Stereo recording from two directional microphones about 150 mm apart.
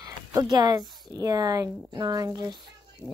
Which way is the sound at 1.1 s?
25° right (ahead or behind).